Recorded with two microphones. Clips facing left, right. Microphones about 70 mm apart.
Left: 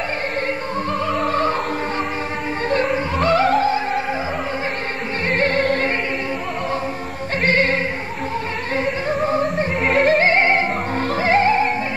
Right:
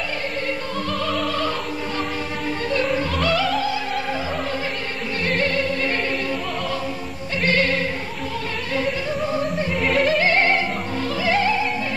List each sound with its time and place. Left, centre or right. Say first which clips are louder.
1.1 s opera: left 6 dB; left
2.7 s opera: left 3 dB; left
5.3 s music: left 5 dB; left
7.4 s music: left 2 dB; left
9.9 s music: left 4 dB; left
10.2 s music: left 3 dB; left
11.0 s music: left 4 dB; left